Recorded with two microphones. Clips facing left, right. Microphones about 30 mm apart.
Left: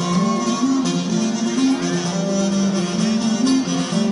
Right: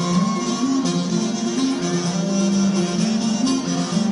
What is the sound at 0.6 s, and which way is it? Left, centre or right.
Music, centre.